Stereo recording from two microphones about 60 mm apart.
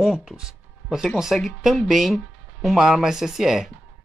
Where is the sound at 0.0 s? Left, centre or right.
Centre.